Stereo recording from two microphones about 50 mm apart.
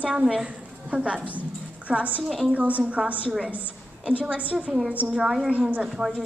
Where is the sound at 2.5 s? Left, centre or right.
Right.